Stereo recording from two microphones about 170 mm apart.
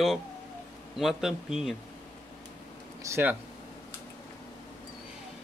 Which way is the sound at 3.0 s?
20° right (ahead or behind).